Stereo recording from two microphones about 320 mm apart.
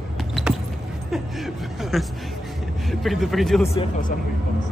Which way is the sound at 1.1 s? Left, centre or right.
Centre.